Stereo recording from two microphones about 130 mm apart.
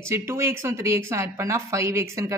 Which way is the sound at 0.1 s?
20° right (ahead or behind).